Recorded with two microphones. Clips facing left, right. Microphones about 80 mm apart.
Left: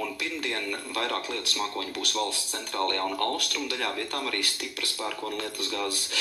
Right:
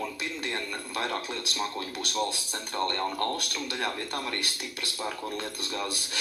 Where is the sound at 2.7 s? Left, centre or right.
Right.